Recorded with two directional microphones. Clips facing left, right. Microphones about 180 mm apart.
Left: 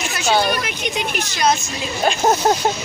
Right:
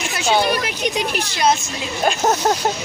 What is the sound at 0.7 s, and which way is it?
Speech, 35° right (ahead or behind).